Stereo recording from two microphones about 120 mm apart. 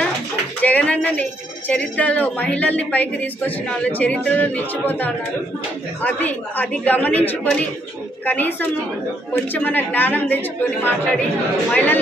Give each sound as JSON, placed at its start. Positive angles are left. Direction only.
{"t": 0.6, "sound": "speech", "side_deg": 10}